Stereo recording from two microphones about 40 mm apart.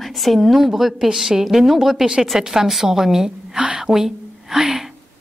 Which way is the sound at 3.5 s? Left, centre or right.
Right.